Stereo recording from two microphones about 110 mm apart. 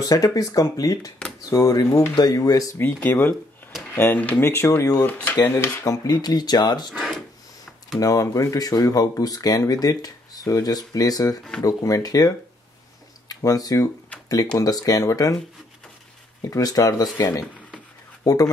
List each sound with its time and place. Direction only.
0.1 s speech: 30° left (ahead or behind)
2.8 s speech: 20° left (ahead or behind)
5.0 s speech: 15° left (ahead or behind)
5.9 s speech: 35° left (ahead or behind)
6.9 s a sound: centre (ahead or behind)
8.0 s speech: 30° left (ahead or behind)
14.1 s a sound: 10° left (ahead or behind)
14.6 s speech: 35° left (ahead or behind)
16.4 s speech: 30° left (ahead or behind)